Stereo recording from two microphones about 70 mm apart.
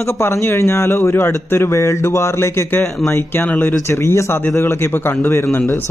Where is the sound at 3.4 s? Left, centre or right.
Left.